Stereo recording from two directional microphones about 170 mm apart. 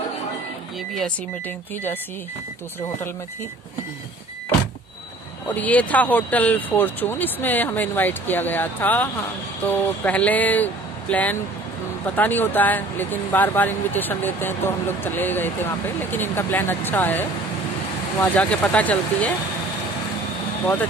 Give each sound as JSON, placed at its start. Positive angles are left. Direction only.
{"t": 5.5, "sound": "speech", "side_deg": 10}